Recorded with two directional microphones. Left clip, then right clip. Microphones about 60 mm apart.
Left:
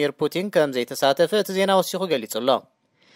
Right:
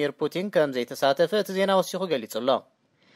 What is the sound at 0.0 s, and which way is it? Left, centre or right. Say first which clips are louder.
Speech: left 4 dB; left.